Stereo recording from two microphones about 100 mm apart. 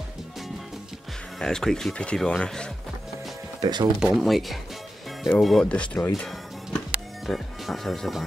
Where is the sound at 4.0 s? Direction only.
5° right (ahead or behind); by 6.1 s 15° left (ahead or behind).